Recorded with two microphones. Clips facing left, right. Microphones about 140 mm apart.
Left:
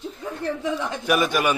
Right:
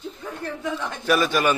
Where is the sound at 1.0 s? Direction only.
15° left (ahead or behind).